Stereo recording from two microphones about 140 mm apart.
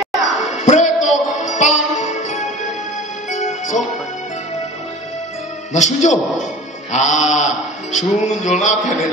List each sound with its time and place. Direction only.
0.5 s music: 55° left (ahead or behind)
5.7 s a man's voice: 60° left (ahead or behind)
6.9 s mantra: 60° left (ahead or behind)